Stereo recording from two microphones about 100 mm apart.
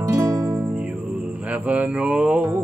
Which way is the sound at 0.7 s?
10° right (ahead or behind).